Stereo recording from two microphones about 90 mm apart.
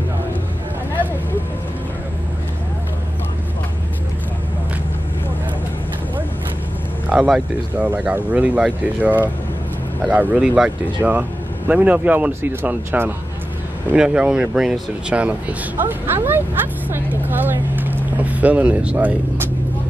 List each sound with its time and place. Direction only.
7.1 s speech: 10° right (ahead or behind)
13.9 s speech: 10° right (ahead or behind)